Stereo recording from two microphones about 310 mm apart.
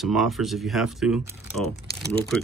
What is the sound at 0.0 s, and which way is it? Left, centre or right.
Speech, centre.